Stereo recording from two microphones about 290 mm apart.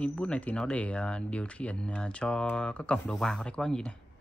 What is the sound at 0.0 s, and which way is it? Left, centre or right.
Speech, centre.